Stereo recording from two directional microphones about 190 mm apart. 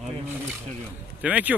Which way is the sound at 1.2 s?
5° right (ahead or behind).